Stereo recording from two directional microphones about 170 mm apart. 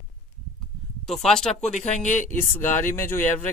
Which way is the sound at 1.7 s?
45° left (ahead or behind).